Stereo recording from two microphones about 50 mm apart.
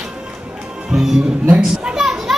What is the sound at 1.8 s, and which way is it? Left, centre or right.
Children playing, centre.